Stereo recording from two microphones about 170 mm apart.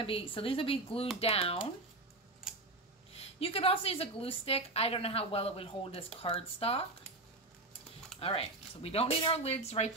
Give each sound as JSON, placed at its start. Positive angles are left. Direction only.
{"t": 0.0, "sound": "a woman's voice", "side_deg": 30}
{"t": 3.2, "sound": "a woman's voice", "side_deg": 35}
{"t": 8.2, "sound": "a woman's voice", "side_deg": 35}